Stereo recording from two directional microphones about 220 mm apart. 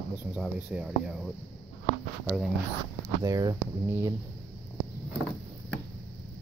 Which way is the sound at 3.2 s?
15° right (ahead or behind).